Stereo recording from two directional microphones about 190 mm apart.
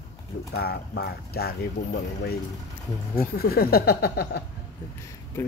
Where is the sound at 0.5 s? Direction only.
60° left (ahead or behind).